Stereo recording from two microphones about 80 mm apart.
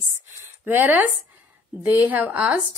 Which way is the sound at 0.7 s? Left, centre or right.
Right.